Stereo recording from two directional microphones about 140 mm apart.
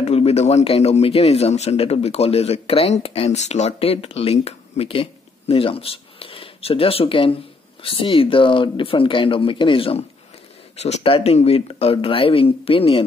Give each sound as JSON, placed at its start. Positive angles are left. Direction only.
{"t": 0.0, "sound": "a man's voice", "side_deg": 50}